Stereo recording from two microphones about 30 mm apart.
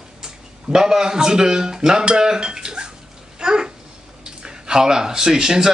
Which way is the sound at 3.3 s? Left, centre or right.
Right.